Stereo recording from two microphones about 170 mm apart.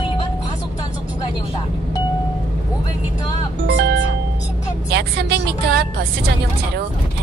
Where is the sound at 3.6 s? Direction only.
80° right.